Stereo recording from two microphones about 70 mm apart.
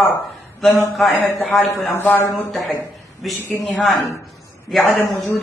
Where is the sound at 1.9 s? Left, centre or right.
Left.